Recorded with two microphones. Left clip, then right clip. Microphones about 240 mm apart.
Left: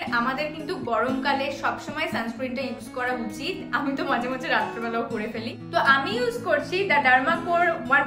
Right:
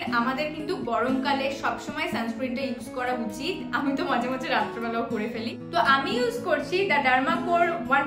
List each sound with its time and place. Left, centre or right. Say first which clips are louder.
0.1 s a woman's voice: left 1 dB; centre